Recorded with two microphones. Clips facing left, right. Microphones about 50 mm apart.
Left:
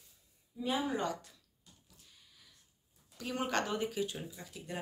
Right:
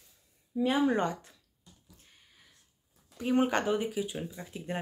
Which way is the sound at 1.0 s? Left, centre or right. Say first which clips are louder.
Right 5 dB; right.